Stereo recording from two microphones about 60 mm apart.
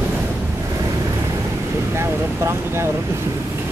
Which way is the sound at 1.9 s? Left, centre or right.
Right.